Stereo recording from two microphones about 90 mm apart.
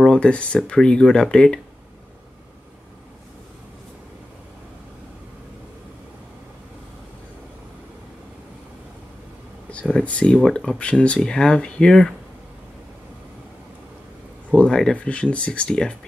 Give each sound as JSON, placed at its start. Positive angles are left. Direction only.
{"t": 0.0, "sound": "speech", "side_deg": 10}
{"t": 9.9, "sound": "speech", "side_deg": 15}
{"t": 14.5, "sound": "speech", "side_deg": 10}